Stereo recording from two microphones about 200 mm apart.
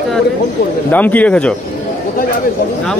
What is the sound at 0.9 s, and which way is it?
Speech, 10° left (ahead or behind).